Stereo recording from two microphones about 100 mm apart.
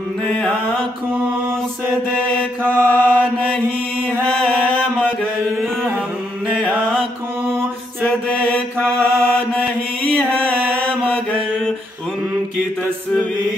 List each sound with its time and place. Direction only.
2.6 s mantra: 20° right (ahead or behind)
2.9 s mantra: 10° left (ahead or behind)
8.7 s mantra: 20° right (ahead or behind)